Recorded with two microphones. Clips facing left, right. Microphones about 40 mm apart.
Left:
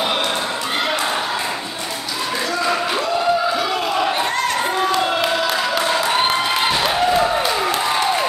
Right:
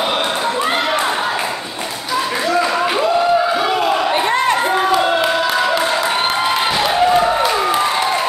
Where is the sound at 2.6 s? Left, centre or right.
Centre.